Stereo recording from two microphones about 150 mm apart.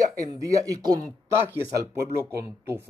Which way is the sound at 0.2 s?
20° right (ahead or behind).